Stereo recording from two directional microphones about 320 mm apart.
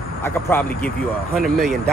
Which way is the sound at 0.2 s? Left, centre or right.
Centre.